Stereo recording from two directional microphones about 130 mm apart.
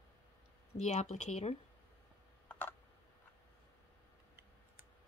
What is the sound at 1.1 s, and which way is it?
Speech, 65° left (ahead or behind).